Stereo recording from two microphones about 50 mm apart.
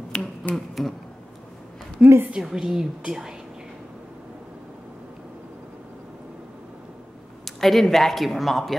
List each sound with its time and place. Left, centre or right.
0.1 s finger snapping: left
0.8 s speech: centre
2.0 s a woman's voice: right
2.4 s a woman's voice: centre
7.4 s speech: centre